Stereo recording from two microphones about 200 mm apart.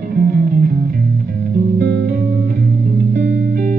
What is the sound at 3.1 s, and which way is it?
Music, 45° right (ahead or behind).